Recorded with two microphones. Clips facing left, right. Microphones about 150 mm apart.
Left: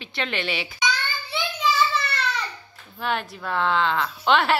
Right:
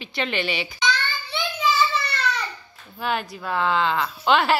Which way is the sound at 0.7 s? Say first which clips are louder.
Right 2 dB; 10° left (ahead or behind).